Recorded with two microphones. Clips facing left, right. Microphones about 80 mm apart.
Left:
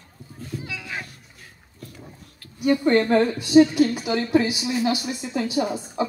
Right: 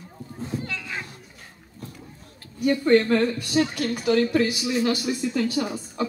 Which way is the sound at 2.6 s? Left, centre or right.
Centre.